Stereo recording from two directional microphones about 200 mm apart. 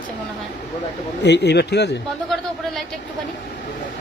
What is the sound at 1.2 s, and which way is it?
Speech, 60° left (ahead or behind).